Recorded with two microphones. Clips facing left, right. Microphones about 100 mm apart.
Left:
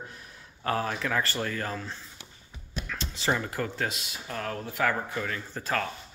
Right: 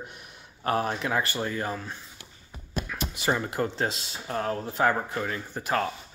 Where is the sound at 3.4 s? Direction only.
25° right (ahead or behind).